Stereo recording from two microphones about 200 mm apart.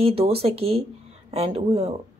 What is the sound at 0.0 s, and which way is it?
Speech, 30° right (ahead or behind).